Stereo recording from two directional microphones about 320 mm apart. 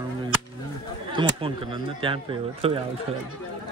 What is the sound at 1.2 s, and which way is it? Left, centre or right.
Speech, centre.